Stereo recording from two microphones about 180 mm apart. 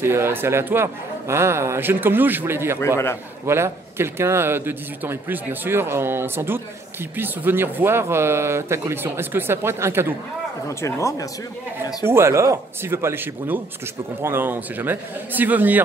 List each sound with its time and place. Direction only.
0.0 s a man's voice: 15° right (ahead or behind)
10.8 s speech: 15° left (ahead or behind)
12.1 s a man's voice: 15° right (ahead or behind)